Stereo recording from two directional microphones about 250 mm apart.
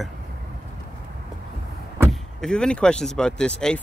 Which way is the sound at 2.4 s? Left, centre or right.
Centre.